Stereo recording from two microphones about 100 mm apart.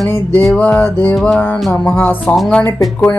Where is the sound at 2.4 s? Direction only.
5° left (ahead or behind).